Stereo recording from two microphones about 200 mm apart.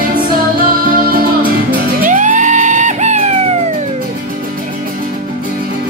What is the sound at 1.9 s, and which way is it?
Music, 40° right (ahead or behind).